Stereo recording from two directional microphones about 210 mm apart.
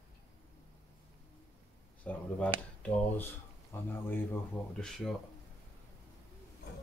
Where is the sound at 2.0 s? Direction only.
5° left (ahead or behind).